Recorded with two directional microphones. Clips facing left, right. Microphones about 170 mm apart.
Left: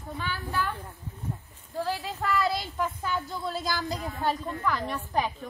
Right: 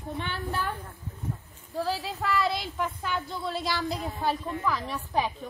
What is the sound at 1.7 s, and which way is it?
A woman's voice, centre (ahead or behind).